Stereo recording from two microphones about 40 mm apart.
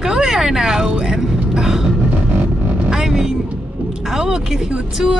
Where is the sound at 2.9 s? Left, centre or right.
Centre.